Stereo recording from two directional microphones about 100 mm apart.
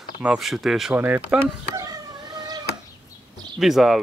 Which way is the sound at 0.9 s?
20° right (ahead or behind).